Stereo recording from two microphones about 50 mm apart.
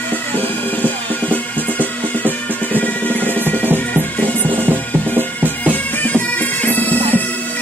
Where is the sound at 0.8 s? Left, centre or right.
Left.